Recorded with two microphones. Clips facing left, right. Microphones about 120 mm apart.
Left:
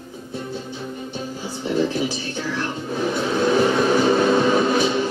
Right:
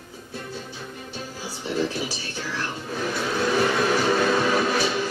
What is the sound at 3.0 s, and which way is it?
Music, 25° left (ahead or behind).